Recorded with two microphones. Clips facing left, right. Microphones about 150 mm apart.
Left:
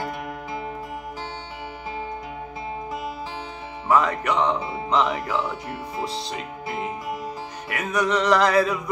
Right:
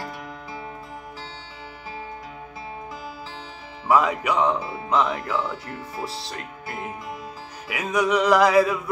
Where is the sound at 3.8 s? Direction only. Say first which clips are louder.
Right 1 dB; 10° right (ahead or behind).